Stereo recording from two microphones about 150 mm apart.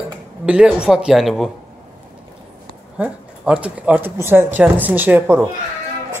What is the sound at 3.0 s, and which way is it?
Speech, 10° right (ahead or behind).